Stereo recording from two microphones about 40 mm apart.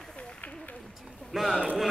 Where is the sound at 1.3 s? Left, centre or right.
Centre.